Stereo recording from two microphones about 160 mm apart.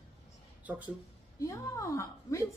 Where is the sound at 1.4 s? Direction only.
20° left (ahead or behind).